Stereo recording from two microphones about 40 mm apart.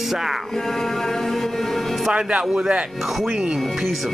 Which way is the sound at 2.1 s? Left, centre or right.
Right.